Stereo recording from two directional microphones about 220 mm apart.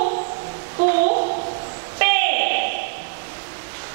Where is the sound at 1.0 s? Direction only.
35° right (ahead or behind).